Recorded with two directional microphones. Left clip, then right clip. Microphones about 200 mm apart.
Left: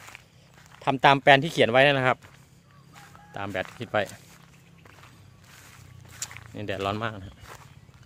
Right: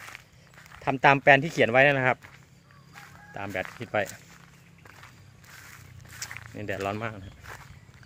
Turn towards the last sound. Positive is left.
turn(degrees=5)  # may be behind; listen again after turning